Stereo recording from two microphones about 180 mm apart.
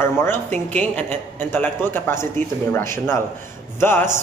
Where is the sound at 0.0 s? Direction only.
15° left (ahead or behind).